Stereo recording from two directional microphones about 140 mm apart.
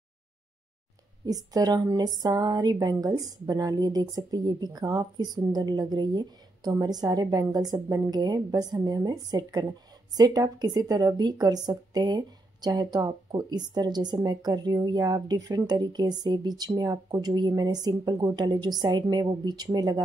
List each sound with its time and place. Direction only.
1.2 s speech: 25° right (ahead or behind)